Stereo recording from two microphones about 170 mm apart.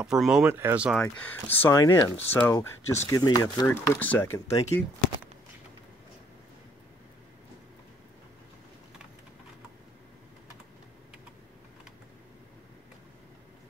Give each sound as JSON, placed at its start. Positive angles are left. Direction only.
{"t": 0.0, "sound": "speech", "side_deg": -5}
{"t": 1.0, "sound": "speech", "side_deg": 10}
{"t": 3.6, "sound": "speech", "side_deg": 15}